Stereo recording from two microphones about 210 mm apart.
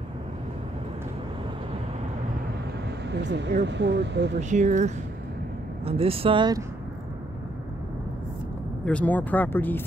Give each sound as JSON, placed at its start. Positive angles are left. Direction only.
{"t": 3.1, "sound": "speech", "side_deg": -55}
{"t": 4.4, "sound": "speech", "side_deg": -35}
{"t": 8.8, "sound": "speech", "side_deg": 5}